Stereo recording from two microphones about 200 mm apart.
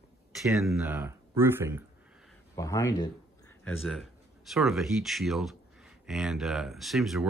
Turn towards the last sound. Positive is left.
turn(degrees=0)  # may be behind; listen again after turning